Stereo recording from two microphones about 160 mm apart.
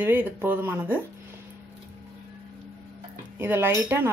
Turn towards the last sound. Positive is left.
turn(degrees=-10)  # may be behind; listen again after turning